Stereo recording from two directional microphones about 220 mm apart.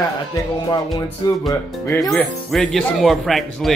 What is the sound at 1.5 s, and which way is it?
Speech, 15° left (ahead or behind).